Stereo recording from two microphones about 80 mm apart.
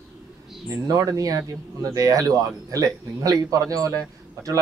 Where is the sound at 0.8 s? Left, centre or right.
Right.